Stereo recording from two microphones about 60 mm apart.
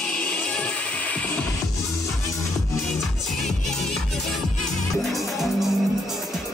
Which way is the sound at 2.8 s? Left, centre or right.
Centre.